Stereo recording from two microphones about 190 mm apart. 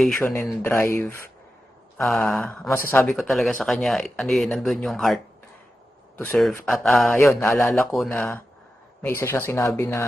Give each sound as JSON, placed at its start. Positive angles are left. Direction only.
{"t": 0.0, "sound": "a man's voice", "side_deg": 10}
{"t": 7.2, "sound": "a man's voice", "side_deg": 15}